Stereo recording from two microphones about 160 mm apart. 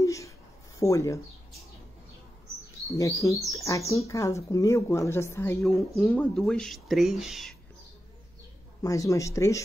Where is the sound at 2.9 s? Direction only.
20° left (ahead or behind).